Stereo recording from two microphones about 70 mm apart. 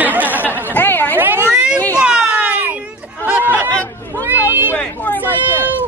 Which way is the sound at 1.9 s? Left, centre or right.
Centre.